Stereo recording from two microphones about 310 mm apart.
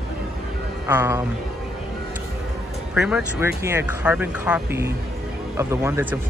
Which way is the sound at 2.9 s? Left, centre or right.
Centre.